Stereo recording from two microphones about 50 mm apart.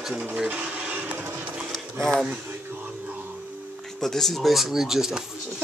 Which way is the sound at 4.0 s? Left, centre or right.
Centre.